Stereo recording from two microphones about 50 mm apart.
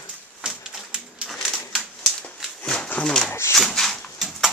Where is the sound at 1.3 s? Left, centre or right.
Centre.